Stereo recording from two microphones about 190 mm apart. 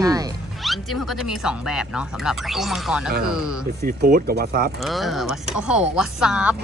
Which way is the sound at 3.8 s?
50° right (ahead or behind).